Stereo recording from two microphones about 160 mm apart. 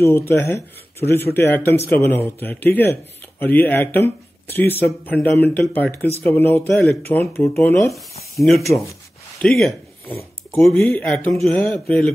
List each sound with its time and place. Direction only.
0.0 s speech: 15° left (ahead or behind)